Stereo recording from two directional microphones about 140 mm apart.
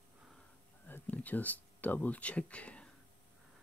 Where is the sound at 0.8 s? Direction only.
10° left (ahead or behind).